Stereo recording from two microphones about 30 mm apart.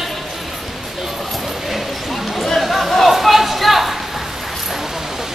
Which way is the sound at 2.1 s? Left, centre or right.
Centre.